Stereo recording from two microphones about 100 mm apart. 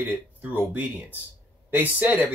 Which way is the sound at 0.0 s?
15° right (ahead or behind).